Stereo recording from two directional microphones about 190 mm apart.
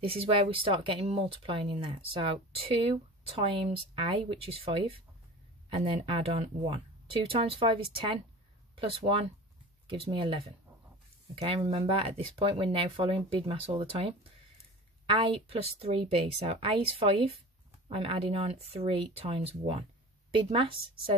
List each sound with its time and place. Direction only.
0.0 s speech: 30° right (ahead or behind)